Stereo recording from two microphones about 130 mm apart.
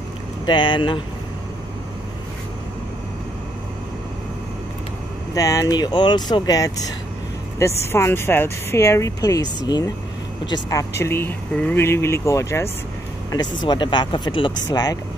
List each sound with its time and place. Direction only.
0.5 s speech: 35° left (ahead or behind)
5.3 s a woman's voice: 25° left (ahead or behind)
13.3 s speech: 35° left (ahead or behind)